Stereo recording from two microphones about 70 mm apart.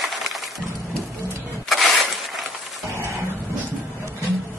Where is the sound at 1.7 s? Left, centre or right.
Centre.